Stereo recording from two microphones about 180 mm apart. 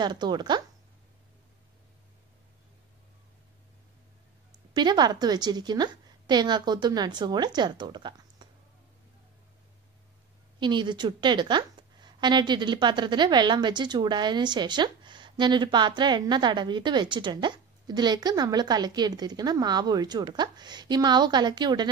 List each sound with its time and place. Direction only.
0.0 s a woman's voice: 25° right (ahead or behind)
4.7 s a woman's voice: 25° right (ahead or behind)
10.6 s a woman's voice: 25° right (ahead or behind)